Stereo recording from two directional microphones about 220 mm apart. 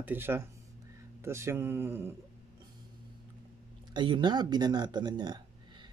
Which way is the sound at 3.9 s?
20° right (ahead or behind).